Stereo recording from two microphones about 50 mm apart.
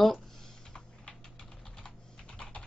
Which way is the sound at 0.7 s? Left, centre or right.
Centre.